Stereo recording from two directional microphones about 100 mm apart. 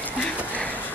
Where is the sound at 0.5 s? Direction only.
15° left (ahead or behind).